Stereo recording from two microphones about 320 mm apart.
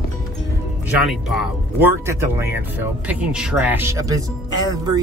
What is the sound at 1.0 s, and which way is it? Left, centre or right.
Speech, centre.